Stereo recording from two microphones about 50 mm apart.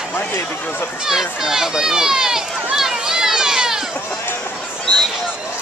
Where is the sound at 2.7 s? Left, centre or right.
Centre.